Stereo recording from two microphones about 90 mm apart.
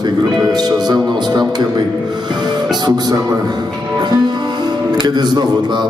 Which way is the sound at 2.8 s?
50° right (ahead or behind).